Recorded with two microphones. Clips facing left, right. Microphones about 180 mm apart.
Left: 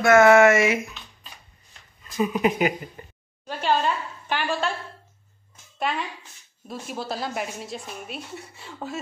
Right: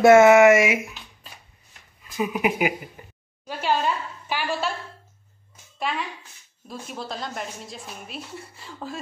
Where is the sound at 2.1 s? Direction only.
10° right (ahead or behind).